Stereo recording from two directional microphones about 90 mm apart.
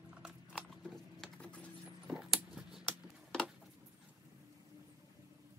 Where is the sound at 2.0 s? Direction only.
Centre (ahead or behind).